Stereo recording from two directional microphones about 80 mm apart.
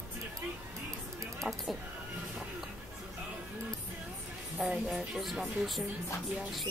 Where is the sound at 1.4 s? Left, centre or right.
Right.